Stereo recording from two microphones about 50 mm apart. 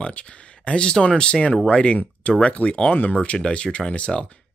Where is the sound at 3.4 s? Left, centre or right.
Centre.